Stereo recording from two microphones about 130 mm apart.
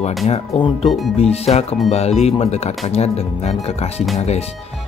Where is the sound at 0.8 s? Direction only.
Centre (ahead or behind).